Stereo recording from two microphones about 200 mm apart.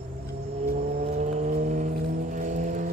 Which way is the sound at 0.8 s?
35° right (ahead or behind).